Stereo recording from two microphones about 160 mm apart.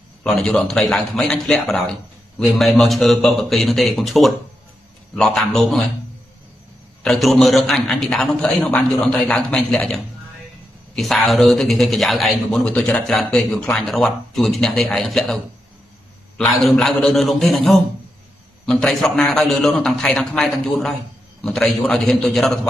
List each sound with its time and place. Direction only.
0.2 s speech: 5° left (ahead or behind)
7.0 s speech: centre (ahead or behind)
11.0 s speech: centre (ahead or behind)